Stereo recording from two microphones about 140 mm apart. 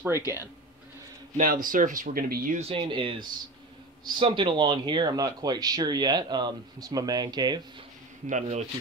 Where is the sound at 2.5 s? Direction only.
40° right (ahead or behind).